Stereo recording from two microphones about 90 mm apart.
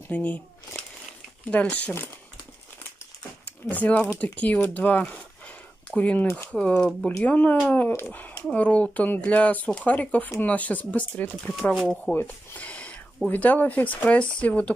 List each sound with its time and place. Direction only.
0.1 s speech: 15° left (ahead or behind)
3.7 s speech: 15° left (ahead or behind)